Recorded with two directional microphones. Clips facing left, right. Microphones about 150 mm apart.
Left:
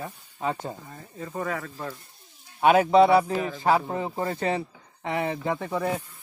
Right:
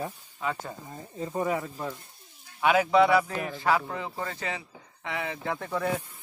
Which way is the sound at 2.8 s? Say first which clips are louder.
Left 2 dB; 30° left (ahead or behind).